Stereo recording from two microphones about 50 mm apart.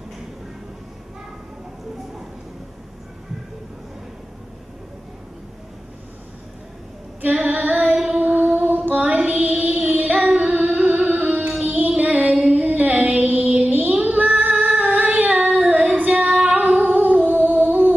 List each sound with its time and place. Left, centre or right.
7.4 s child singing: right
8.2 s a sound: right
9.0 s music: right
9.8 s child singing: right
12.0 s female singing: right
13.6 s child singing: right
13.9 s female singing: right
17.4 s a sound: right